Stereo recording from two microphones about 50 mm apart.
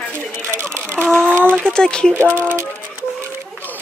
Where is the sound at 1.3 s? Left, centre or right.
Right.